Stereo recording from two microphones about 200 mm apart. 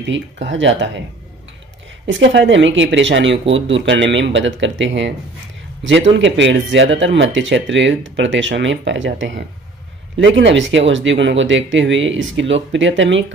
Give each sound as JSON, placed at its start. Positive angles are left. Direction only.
{"t": 0.0, "sound": "speech", "side_deg": -70}
{"t": 2.0, "sound": "speech", "side_deg": -65}